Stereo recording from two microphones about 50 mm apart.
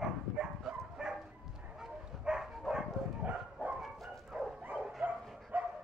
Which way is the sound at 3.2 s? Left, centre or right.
Right.